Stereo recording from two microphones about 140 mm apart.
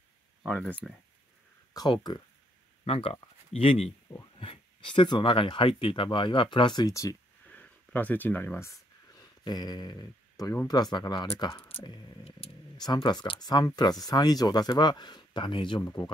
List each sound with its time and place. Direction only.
0.6 s speech: 15° right (ahead or behind)
1.7 s speech: 30° left (ahead or behind)
2.8 s speech: 45° left (ahead or behind); by 7.2 s 25° left (ahead or behind)
7.4 s speech: 10° left (ahead or behind)
9.2 s speech: 30° left (ahead or behind)
12.3 s speech: 45° left (ahead or behind)
12.7 s speech: 30° left (ahead or behind)